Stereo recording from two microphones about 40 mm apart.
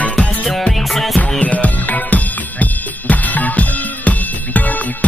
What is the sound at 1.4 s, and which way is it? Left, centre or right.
Music, left.